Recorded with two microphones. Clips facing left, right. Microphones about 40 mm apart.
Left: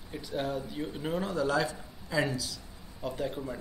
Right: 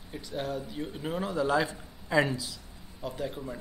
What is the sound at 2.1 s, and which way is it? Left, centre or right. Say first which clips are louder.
Speech: right 4 dB; right.